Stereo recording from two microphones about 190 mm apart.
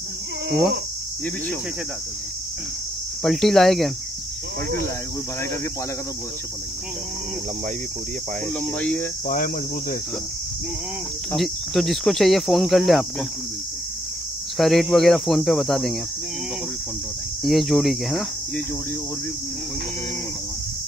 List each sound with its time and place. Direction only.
3.2 s speech: centre (ahead or behind)
8.5 s speech: 5° left (ahead or behind)
9.3 s cricket: 45° left (ahead or behind)
11.3 s speech: centre (ahead or behind)
14.6 s speech: centre (ahead or behind)
17.4 s speech: centre (ahead or behind)